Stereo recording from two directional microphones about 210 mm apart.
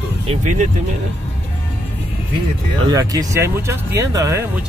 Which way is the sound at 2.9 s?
15° right (ahead or behind).